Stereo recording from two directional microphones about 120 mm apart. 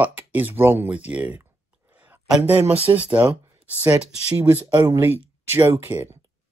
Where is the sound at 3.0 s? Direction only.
10° right (ahead or behind).